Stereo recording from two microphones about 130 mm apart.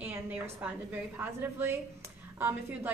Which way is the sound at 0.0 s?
10° right (ahead or behind).